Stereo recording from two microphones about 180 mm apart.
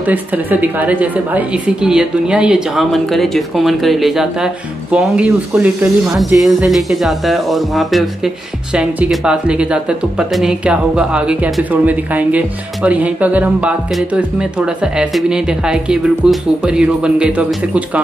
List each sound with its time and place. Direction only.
0.0 s speech: 10° right (ahead or behind)